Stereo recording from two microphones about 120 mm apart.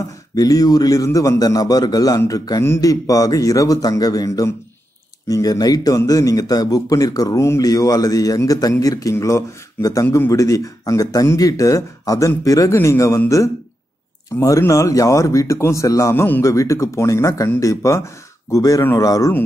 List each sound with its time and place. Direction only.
0.4 s a man's voice: 30° left (ahead or behind)